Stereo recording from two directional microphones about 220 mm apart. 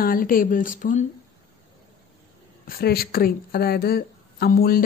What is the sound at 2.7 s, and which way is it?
Speech, 45° left (ahead or behind).